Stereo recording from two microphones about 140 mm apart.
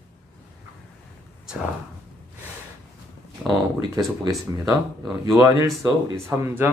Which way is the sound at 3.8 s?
30° right (ahead or behind).